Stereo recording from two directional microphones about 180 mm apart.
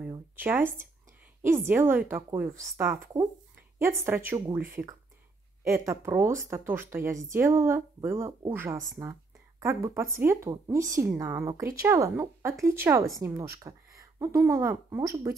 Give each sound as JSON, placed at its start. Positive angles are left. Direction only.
{"t": 0.4, "sound": "speech", "side_deg": -10}
{"t": 5.7, "sound": "speech", "side_deg": -15}